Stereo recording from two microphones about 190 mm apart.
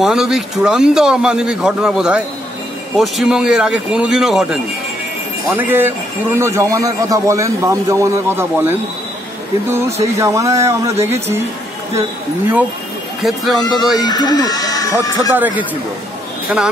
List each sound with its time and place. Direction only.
0.0 s a man's voice: centre (ahead or behind)
9.7 s a man's voice: 10° right (ahead or behind)
13.2 s a man's voice: centre (ahead or behind)
14.0 s speech: 20° left (ahead or behind)
15.3 s a man's voice: 10° right (ahead or behind)